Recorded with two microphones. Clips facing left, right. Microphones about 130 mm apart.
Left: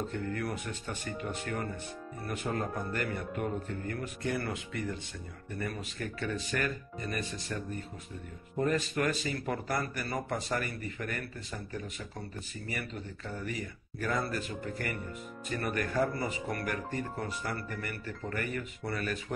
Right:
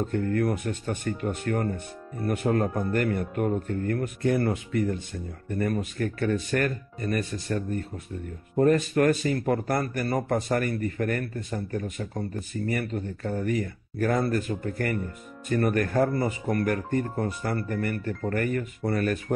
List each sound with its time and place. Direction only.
0.1 s a man's voice: 50° right (ahead or behind)